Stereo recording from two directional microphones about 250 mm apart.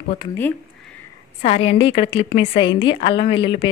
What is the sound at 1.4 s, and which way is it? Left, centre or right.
Speech, left.